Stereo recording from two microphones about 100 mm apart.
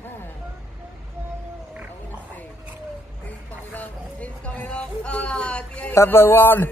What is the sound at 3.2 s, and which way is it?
Speech, 15° left (ahead or behind).